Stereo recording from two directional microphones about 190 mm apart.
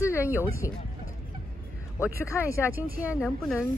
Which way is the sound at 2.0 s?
15° left (ahead or behind).